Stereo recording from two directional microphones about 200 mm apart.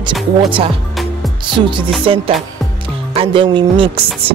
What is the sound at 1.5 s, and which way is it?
Music, 25° right (ahead or behind).